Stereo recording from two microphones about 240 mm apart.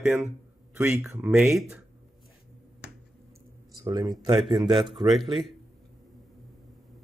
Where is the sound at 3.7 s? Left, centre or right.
Centre.